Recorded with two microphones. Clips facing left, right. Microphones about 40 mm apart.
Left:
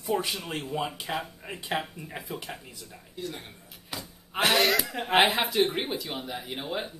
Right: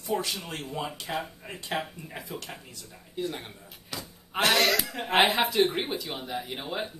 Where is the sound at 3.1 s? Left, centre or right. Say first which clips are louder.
Right 4 dB; right.